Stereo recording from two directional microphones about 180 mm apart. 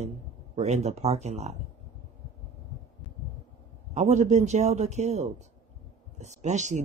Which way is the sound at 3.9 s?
40° right (ahead or behind).